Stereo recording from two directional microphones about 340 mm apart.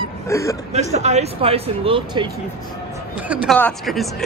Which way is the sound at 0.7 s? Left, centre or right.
Centre.